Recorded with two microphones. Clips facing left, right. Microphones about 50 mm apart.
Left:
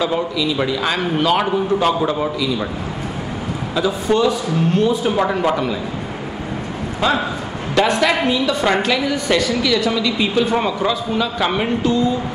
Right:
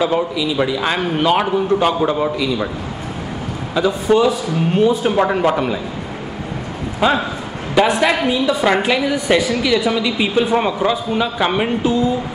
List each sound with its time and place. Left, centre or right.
0.0 s a man's voice: centre
3.7 s a man's voice: centre
7.0 s a man's voice: centre